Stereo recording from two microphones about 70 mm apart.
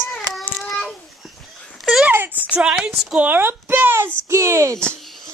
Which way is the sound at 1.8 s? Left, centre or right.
Centre.